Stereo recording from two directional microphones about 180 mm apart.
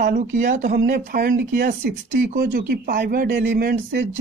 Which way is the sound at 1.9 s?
65° right (ahead or behind).